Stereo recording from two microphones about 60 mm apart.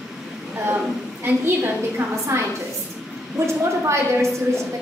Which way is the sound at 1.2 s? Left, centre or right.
Right.